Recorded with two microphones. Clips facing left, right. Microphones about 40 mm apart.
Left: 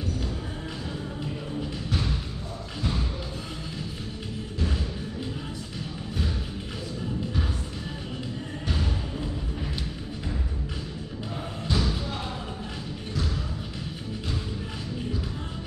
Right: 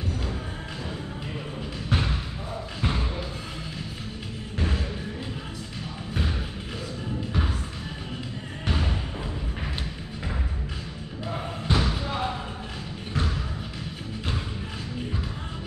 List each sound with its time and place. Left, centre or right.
1.9 s basketball bounce: right
2.8 s thump: right
4.6 s music: right
8.6 s music: right
11.6 s basketball bounce: right